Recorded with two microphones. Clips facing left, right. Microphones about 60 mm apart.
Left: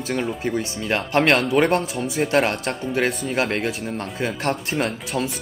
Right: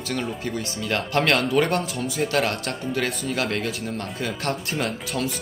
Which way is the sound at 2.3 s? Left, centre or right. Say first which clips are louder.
Left 6 dB; left.